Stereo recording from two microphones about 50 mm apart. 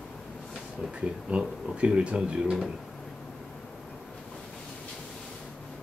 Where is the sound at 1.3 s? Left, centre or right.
Right.